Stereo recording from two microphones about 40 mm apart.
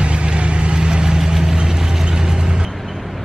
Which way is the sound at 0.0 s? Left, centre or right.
Right.